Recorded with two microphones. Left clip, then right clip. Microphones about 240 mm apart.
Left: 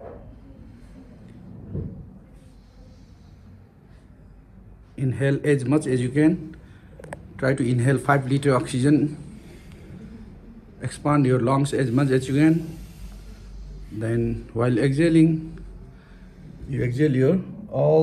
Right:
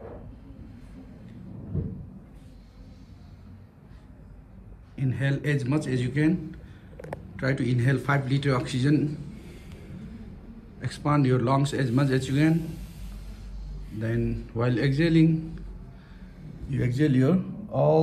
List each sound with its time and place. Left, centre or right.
4.9 s a man's voice: centre
10.8 s a man's voice: centre
13.9 s a man's voice: centre
16.7 s speech: centre